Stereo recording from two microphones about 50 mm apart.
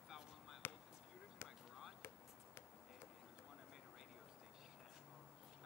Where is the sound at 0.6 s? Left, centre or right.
Left.